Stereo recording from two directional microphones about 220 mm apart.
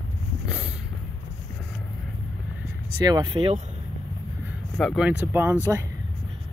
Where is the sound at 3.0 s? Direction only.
20° right (ahead or behind).